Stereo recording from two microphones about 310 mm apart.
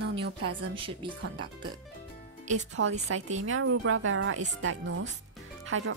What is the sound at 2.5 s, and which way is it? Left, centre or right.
Speech, right.